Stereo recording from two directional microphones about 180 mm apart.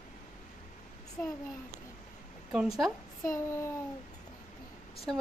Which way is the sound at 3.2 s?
15° left (ahead or behind).